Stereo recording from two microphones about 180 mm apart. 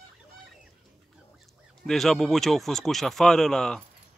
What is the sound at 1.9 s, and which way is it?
Speech, centre (ahead or behind).